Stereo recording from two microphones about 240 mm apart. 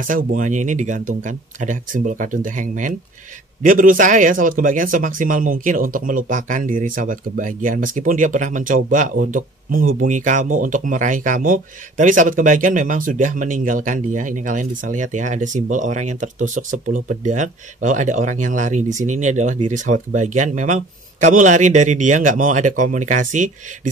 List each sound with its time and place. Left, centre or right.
0.0 s speech: right